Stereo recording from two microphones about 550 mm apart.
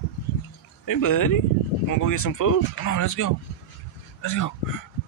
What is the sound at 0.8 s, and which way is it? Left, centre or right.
Speech, left.